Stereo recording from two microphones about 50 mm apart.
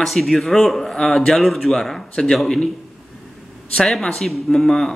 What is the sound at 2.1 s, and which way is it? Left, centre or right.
Speech, centre.